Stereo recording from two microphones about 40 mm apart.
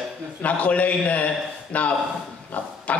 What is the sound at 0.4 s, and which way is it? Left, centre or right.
A man's voice, left.